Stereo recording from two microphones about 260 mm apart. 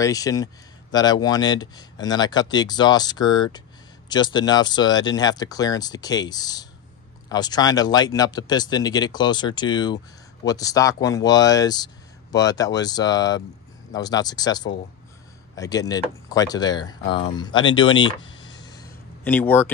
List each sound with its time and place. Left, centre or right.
0.0 s speech: centre
18.0 s a sound: centre
19.2 s speech: centre